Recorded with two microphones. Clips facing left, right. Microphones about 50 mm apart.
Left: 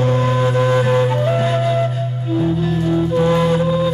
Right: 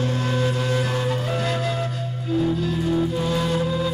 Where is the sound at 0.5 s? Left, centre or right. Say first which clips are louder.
Left 9 dB; left.